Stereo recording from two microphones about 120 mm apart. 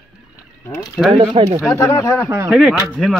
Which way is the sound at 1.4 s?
55° right (ahead or behind).